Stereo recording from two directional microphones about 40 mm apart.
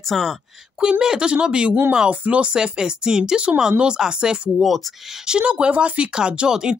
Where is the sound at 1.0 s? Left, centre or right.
Centre; by 2.5 s right.